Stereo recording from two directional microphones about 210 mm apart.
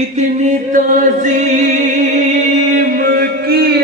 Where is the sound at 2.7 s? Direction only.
45° right (ahead or behind).